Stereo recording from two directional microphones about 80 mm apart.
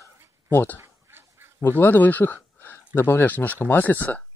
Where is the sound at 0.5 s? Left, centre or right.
Left.